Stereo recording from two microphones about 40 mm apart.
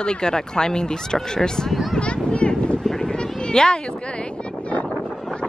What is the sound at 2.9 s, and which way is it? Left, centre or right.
Speech, centre.